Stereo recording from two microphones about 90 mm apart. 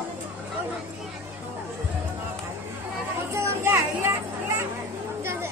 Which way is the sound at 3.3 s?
30° right (ahead or behind).